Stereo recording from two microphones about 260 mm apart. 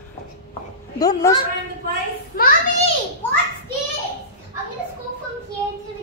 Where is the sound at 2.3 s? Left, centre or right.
Left.